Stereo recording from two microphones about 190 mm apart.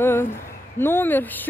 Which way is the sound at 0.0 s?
10° left (ahead or behind).